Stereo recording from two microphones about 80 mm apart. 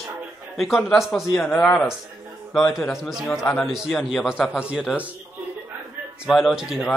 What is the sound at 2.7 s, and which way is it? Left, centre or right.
Speech, centre.